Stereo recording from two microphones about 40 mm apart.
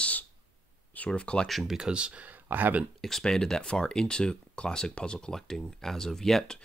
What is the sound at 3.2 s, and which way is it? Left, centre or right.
Speech, centre.